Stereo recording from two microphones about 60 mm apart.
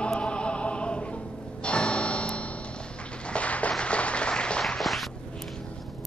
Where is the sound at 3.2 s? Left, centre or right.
Left; by 5.1 s centre.